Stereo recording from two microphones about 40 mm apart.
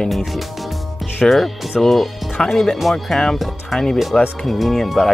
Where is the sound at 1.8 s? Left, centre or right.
Centre.